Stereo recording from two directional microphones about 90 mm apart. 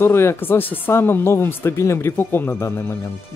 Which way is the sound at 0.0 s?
30° left (ahead or behind).